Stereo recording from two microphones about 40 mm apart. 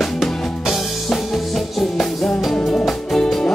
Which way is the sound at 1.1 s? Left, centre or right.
Centre.